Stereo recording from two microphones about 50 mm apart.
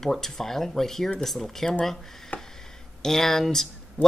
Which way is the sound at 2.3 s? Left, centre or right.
Left.